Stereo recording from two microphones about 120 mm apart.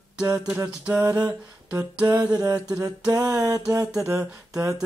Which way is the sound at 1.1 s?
25° right (ahead or behind).